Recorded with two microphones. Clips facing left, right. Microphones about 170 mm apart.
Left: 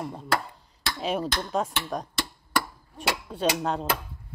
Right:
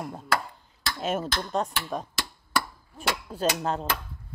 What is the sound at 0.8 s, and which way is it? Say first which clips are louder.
Speech: left 1 dB; centre (ahead or behind).